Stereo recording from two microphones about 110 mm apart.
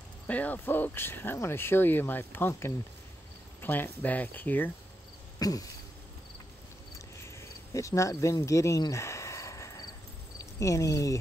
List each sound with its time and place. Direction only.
0.3 s speech: 15° left (ahead or behind)
5.4 s speech: 35° left (ahead or behind)
7.2 s cricket: 25° left (ahead or behind)
10.6 s speech: 30° left (ahead or behind)